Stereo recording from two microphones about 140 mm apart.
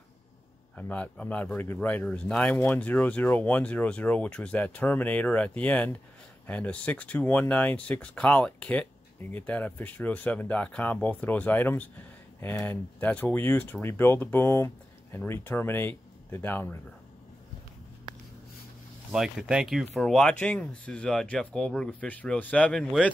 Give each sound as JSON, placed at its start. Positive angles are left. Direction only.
{"t": 0.7, "sound": "speech", "side_deg": 10}
{"t": 19.1, "sound": "speech", "side_deg": -5}